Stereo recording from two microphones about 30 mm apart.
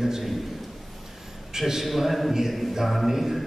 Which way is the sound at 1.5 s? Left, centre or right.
Centre.